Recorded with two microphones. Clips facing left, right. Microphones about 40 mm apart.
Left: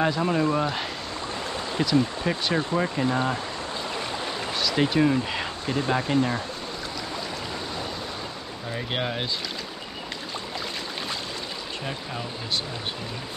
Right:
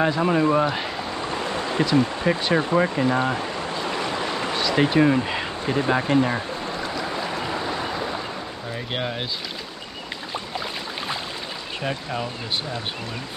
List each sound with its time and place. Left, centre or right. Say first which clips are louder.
0.0 s speech: right 3 dB; centre
4.6 s speech: right 3 dB; centre
5.3 s a sound: right 3 dB; centre
5.8 s speech: right 3 dB; centre
7.1 s stream: right 5 dB; right
8.7 s speech: even; centre
11.8 s speech: right 8 dB; right